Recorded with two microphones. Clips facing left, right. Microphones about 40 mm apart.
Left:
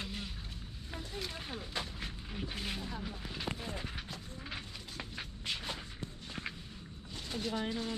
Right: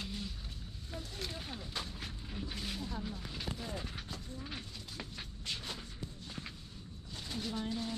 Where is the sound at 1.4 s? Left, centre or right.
Left.